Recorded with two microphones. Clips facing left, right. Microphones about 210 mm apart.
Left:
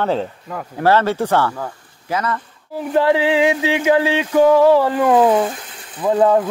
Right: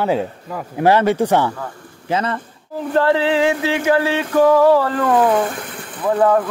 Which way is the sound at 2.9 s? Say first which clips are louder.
Left 1 dB; 15° left (ahead or behind).